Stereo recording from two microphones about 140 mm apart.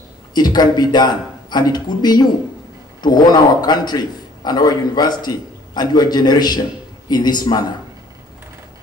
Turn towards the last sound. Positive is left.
turn(degrees=30)  # may be behind; listen again after turning